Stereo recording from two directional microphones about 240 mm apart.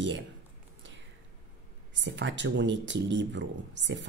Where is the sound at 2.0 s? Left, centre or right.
Right.